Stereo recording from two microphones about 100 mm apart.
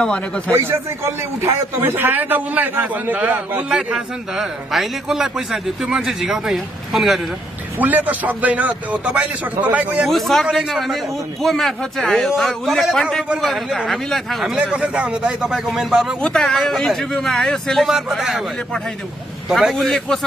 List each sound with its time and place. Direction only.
0.5 s a man's voice: 25° right (ahead or behind); by 7.2 s centre (ahead or behind)
7.8 s a man's voice: 15° right (ahead or behind)
10.0 s speech: centre (ahead or behind)
14.6 s a man's voice: 10° right (ahead or behind)
19.5 s speech: centre (ahead or behind)